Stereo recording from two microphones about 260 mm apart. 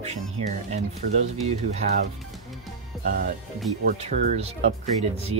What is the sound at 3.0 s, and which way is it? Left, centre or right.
Speech, right.